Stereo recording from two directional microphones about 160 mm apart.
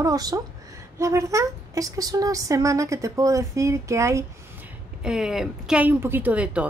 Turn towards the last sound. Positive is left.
turn(degrees=-5)  # may be behind; listen again after turning